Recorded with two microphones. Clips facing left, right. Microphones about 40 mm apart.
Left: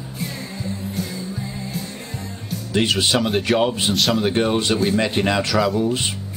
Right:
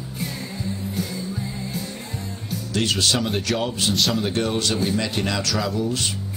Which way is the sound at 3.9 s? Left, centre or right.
Centre.